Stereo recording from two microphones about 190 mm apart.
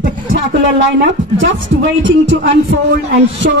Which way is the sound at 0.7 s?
80° right.